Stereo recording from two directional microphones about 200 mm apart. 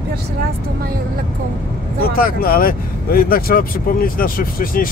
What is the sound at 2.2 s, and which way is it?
Speech, 45° left (ahead or behind).